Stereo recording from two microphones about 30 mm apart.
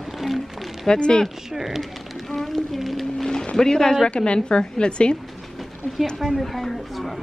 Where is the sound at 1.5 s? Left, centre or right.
Centre.